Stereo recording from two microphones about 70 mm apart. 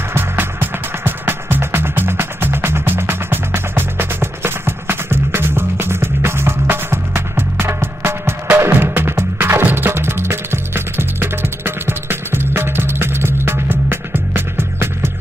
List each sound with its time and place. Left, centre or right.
0.1 s music: right